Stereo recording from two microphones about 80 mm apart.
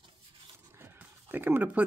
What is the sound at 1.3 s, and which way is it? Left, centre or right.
Speech, right.